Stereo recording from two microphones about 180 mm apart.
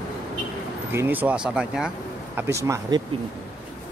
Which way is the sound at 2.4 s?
15° right (ahead or behind).